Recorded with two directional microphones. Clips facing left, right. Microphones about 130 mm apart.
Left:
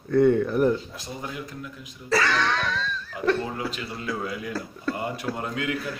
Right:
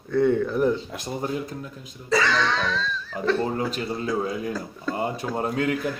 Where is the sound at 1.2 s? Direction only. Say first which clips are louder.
Right 6 dB; 35° right (ahead or behind).